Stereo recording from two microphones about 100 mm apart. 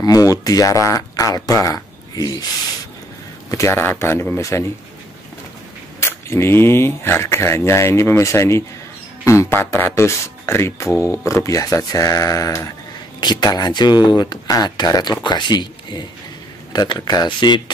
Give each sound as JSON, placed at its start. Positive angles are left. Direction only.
{"t": 0.0, "sound": "speech", "side_deg": 35}
{"t": 3.4, "sound": "speech", "side_deg": 30}
{"t": 5.9, "sound": "speech", "side_deg": 25}
{"t": 13.2, "sound": "speech", "side_deg": 45}